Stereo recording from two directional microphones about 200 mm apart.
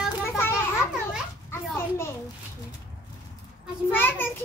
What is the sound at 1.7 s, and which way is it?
Speech, 15° left (ahead or behind).